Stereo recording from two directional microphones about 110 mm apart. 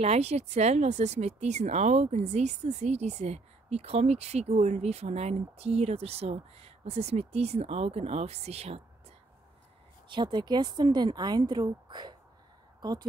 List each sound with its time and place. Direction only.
0.0 s speech: 80° right
10.0 s speech: 45° right (ahead or behind)